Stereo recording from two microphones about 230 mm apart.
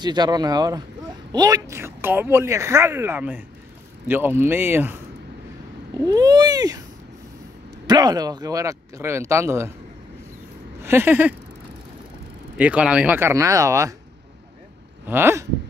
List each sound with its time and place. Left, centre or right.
0.0 s speech: centre
5.9 s speech: centre
7.8 s speech: centre
10.8 s a sound: centre
12.5 s speech: centre
15.0 s speech: centre